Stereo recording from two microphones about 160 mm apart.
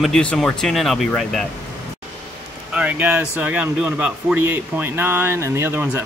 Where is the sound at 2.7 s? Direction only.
10° right (ahead or behind).